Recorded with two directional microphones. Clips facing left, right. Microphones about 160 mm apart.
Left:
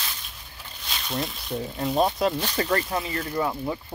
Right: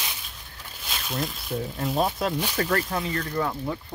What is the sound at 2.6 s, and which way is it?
Speech, 5° left (ahead or behind).